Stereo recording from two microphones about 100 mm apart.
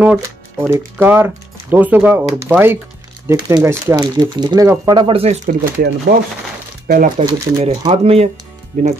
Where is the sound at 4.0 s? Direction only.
45° right (ahead or behind).